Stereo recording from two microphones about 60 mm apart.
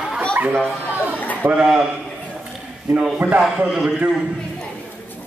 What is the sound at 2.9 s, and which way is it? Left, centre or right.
Speech, right.